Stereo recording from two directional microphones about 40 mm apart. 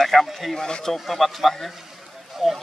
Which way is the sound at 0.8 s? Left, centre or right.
Centre.